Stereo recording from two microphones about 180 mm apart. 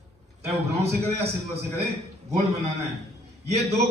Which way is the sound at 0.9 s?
35° right (ahead or behind).